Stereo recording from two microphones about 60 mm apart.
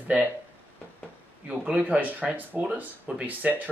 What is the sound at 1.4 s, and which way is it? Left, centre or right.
Speech, centre.